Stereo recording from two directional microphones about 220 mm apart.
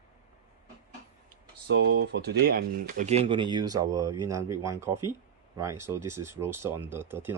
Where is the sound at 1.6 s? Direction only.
55° right (ahead or behind); by 7.3 s 10° right (ahead or behind).